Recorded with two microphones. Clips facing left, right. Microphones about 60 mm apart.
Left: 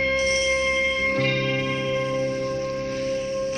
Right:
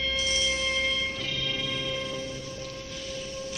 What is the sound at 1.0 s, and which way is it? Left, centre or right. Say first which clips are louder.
Music: left 10 dB; left.